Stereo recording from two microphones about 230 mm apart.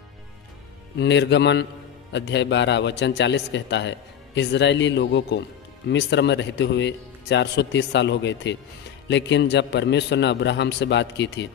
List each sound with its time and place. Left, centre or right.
0.9 s speech: left